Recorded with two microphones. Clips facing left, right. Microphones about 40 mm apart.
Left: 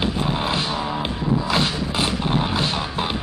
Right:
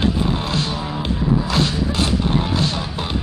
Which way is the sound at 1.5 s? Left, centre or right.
Centre.